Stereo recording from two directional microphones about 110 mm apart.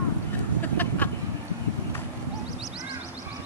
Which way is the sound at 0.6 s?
15° left (ahead or behind).